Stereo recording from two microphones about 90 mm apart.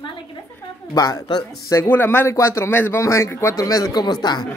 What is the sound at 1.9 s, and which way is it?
Speech, 25° left (ahead or behind).